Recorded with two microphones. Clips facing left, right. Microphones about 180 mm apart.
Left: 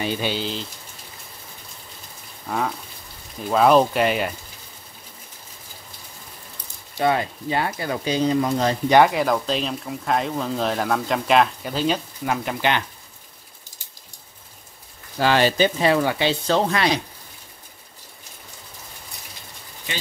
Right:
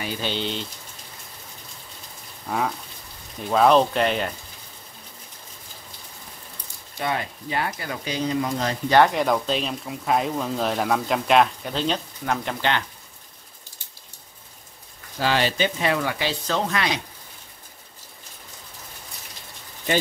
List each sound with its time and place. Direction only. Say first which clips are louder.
0.2 s speech: left 2 dB; 5° left (ahead or behind)
2.4 s speech: even; centre (ahead or behind)
7.0 s speech: left 6 dB; 30° left (ahead or behind)
8.8 s speech: left 1 dB; 15° left (ahead or behind)
9.1 s speech: left 1 dB; centre (ahead or behind)
15.1 s speech: left 4 dB; 60° left (ahead or behind)
15.4 s speech: left 5 dB; 35° left (ahead or behind)